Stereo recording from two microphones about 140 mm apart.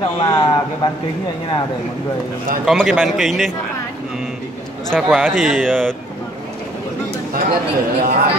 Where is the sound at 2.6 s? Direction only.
Centre (ahead or behind).